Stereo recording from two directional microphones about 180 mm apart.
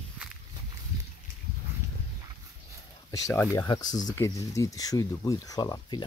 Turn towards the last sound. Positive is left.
turn(degrees=20)  # may be behind; listen again after turning